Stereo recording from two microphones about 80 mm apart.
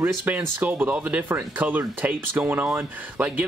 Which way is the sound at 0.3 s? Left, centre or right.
Right.